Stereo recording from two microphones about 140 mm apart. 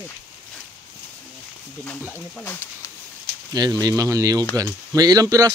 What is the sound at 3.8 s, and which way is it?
Speech, 25° right (ahead or behind).